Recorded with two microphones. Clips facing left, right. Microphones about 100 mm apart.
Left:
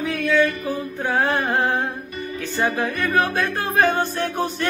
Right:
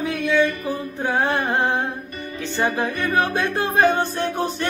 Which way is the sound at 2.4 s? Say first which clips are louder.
Right 1 dB; 20° right (ahead or behind).